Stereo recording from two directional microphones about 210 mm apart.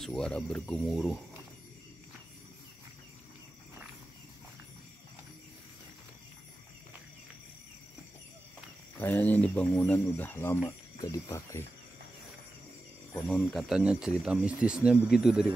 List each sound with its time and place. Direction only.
0.0 s speech: 5° left (ahead or behind)
9.0 s speech: 10° left (ahead or behind)
13.3 s speech: centre (ahead or behind)